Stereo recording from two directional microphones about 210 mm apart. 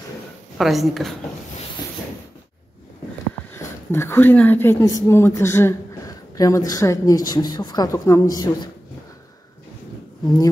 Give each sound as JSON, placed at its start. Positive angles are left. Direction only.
{"t": 0.6, "sound": "a woman's voice", "side_deg": 0}
{"t": 3.5, "sound": "a woman's voice", "side_deg": 10}
{"t": 10.2, "sound": "speech", "side_deg": 20}